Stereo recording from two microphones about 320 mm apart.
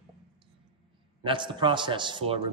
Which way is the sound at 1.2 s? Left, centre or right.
Centre.